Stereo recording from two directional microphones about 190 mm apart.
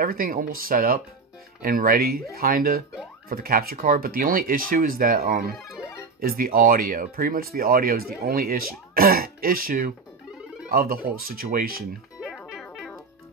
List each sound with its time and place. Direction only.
0.0 s speech: 50° right (ahead or behind)
12.2 s music: centre (ahead or behind)